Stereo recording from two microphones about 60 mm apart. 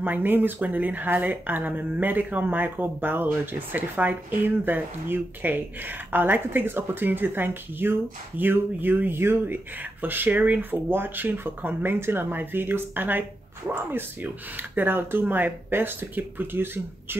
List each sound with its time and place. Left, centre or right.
0.0 s speech: right